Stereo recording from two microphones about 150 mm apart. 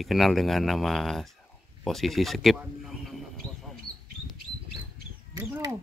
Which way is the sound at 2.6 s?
Centre (ahead or behind).